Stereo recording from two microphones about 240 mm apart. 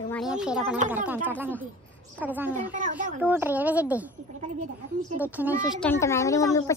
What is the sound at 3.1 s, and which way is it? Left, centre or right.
Speech, centre.